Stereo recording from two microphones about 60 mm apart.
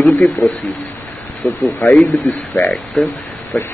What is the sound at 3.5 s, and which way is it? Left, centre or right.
Speech, left.